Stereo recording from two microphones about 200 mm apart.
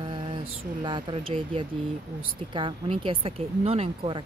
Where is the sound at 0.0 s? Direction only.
25° right (ahead or behind).